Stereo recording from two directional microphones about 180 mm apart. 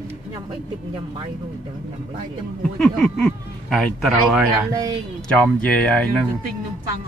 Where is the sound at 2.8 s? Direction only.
5° left (ahead or behind).